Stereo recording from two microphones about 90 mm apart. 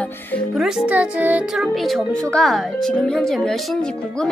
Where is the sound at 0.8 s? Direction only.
15° right (ahead or behind).